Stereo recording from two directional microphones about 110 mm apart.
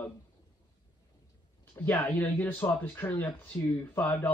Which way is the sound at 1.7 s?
20° left (ahead or behind).